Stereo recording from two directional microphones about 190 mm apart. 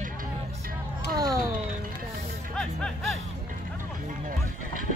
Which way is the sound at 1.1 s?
20° right (ahead or behind).